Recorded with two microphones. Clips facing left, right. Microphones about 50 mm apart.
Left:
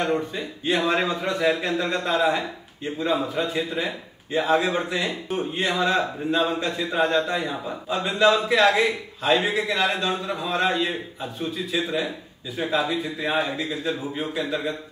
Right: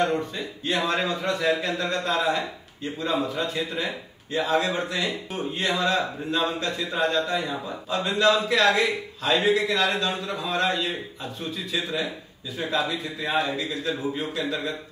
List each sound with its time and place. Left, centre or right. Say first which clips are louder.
0.0 s a man's voice: even; centre